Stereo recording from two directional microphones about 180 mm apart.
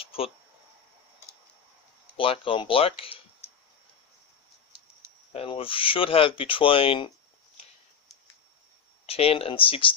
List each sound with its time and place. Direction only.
0.0 s speech: 30° left (ahead or behind)
2.1 s speech: 30° left (ahead or behind)
5.3 s speech: 30° left (ahead or behind)
9.0 s speech: 35° left (ahead or behind)